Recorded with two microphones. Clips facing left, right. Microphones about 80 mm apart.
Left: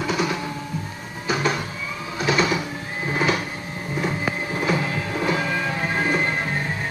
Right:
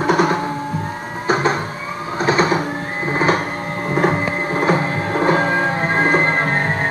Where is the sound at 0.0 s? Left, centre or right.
Right.